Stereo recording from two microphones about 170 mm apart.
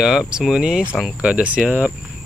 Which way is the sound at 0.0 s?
5° right (ahead or behind).